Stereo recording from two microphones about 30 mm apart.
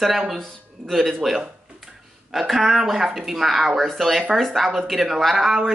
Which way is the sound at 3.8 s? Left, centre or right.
Centre.